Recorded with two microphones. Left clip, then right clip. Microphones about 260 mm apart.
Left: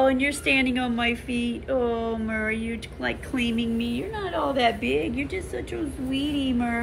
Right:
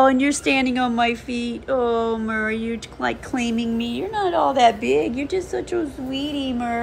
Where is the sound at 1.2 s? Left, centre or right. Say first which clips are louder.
Right 3 dB; centre.